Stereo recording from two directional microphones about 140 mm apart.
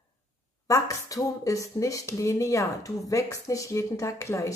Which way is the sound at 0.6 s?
25° left (ahead or behind).